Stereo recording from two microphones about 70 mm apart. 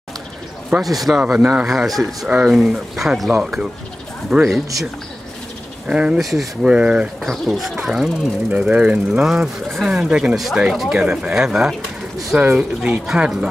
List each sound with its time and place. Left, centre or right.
0.8 s speech: centre
1.3 s speech: centre
1.9 s speech: centre
2.2 s speech: centre
2.5 s speech: centre
5.9 s speech: centre
7.2 s speech: centre
8.5 s speech: centre